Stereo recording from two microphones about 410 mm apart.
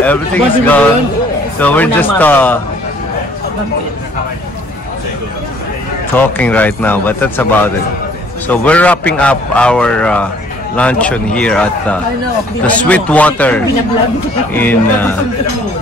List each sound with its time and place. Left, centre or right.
0.0 s a man's voice: centre
6.1 s a man's voice: centre